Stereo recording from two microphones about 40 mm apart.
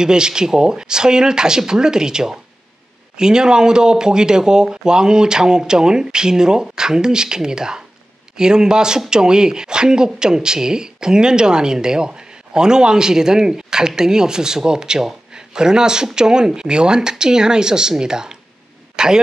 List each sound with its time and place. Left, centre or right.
0.0 s speech: centre